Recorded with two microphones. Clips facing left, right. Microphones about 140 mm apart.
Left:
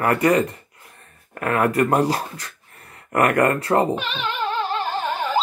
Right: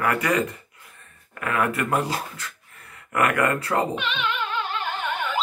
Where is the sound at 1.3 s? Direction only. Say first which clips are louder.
Left 5 dB; 45° left (ahead or behind).